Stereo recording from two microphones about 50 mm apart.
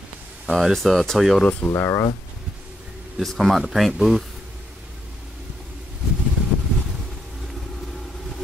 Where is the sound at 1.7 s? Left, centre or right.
Left.